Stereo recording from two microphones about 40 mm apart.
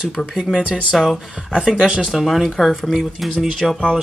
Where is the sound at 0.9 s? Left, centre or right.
Centre.